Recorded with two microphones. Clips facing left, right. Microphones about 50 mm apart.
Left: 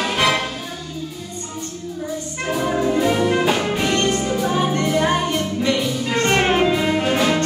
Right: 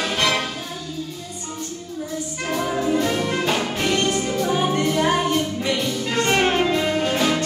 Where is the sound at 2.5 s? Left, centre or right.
Centre.